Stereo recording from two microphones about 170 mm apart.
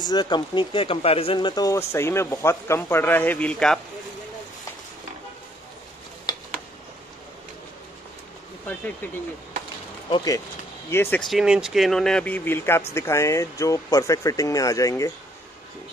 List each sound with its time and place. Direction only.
0.0 s speech: 25° left (ahead or behind); by 3.8 s 5° left (ahead or behind)
10.0 s speech: 25° left (ahead or behind)
10.9 s speech: 10° left (ahead or behind)
11.2 s speech: 5° right (ahead or behind); by 15.1 s 20° left (ahead or behind)